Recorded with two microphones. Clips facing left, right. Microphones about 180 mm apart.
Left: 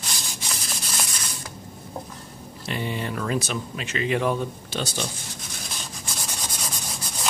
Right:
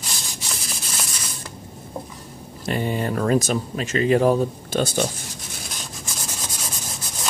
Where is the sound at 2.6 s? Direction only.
45° right (ahead or behind).